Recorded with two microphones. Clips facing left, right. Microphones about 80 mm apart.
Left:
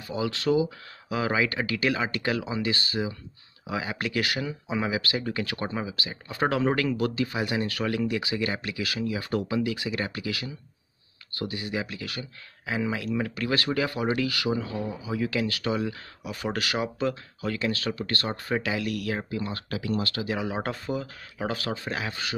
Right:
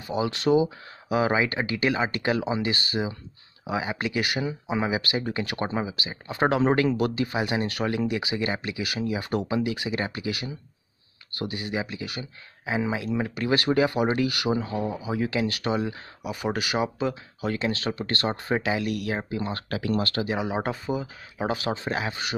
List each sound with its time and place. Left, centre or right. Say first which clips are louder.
0.1 s speech: right 3 dB; right
16.3 s speech: right 2 dB; centre
17.4 s speech: right 3 dB; right
19.7 s speech: right 3 dB; right
20.2 s speech: right 2 dB; centre